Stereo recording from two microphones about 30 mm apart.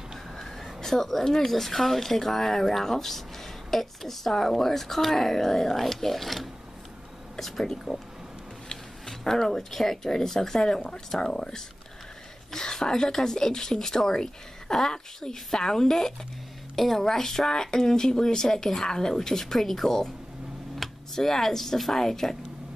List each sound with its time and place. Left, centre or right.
0.7 s speech: centre
10.6 s a woman's voice: left